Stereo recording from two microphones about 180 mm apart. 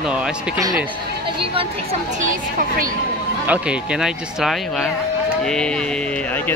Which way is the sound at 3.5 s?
5° right (ahead or behind).